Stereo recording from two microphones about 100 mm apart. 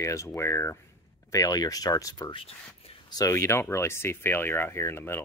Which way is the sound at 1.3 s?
40° left (ahead or behind).